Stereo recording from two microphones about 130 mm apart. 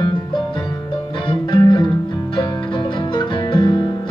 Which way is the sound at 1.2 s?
35° left (ahead or behind).